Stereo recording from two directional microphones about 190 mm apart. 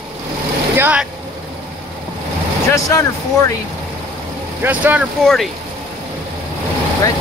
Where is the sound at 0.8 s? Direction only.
10° right (ahead or behind).